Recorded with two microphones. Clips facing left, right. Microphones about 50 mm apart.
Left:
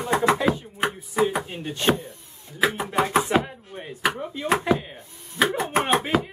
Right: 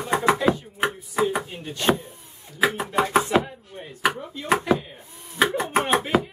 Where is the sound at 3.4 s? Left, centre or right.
Centre.